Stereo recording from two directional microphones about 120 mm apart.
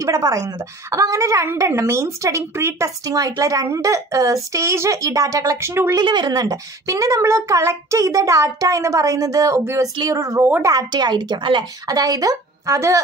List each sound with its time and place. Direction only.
0.0 s a woman's voice: 30° right (ahead or behind)
5.9 s a woman's voice: 40° right (ahead or behind)